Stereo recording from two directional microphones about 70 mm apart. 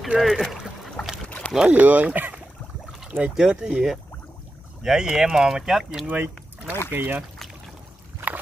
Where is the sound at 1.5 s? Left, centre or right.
Centre.